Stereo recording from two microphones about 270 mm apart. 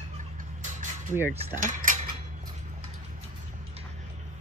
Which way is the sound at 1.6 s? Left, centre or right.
Right.